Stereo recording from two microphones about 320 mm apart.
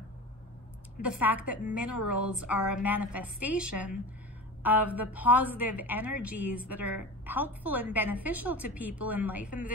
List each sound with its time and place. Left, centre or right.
1.0 s a woman's voice: centre
1.8 s a woman's voice: left
2.0 s a woman's voice: centre